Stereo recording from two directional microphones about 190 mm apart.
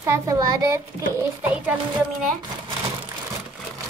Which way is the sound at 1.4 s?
10° right (ahead or behind).